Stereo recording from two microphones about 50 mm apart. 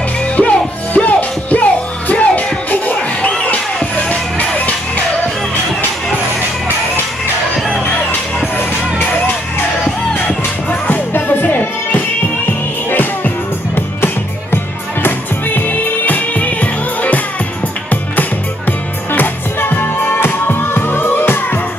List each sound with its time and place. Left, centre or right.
0.4 s music: left
10.1 s music: left
18.7 s music: left